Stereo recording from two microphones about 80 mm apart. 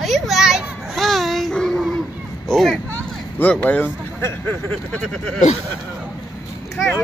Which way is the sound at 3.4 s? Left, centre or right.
Centre.